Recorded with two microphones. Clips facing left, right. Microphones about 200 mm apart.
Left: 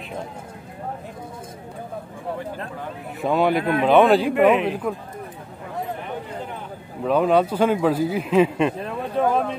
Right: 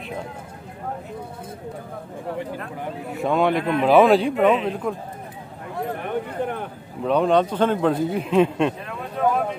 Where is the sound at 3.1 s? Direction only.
Centre (ahead or behind).